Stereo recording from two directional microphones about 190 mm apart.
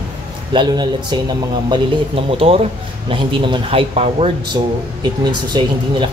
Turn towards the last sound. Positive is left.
turn(degrees=-25)  # may be behind; listen again after turning